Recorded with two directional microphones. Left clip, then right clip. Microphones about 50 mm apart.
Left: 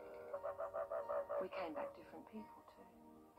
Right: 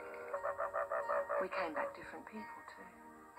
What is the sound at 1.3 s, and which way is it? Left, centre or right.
Speech, centre.